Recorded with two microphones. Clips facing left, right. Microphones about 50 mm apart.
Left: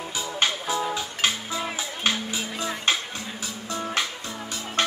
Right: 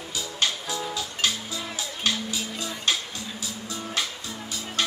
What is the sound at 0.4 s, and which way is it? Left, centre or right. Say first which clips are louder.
Music: left 3 dB; left.